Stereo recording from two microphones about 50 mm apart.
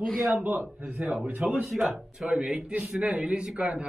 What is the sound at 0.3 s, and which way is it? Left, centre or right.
A man's voice, right.